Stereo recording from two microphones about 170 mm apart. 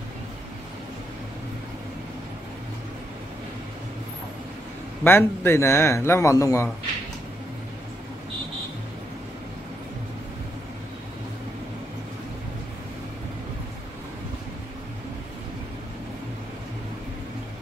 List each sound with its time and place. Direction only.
5.0 s a man's voice: 15° left (ahead or behind)